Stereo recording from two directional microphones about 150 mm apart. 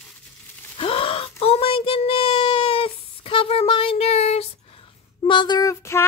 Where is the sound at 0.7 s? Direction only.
35° left (ahead or behind).